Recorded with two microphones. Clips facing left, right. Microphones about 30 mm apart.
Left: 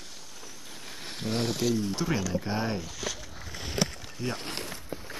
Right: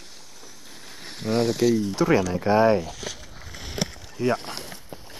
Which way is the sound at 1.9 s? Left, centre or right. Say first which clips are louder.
Right 8 dB; right.